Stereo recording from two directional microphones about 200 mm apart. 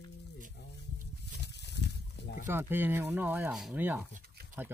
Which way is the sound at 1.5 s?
60° left (ahead or behind).